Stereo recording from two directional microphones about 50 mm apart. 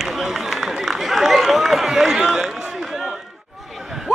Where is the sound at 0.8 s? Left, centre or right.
Centre.